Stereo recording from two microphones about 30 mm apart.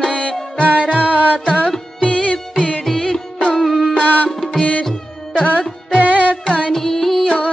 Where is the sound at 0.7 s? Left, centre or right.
Right.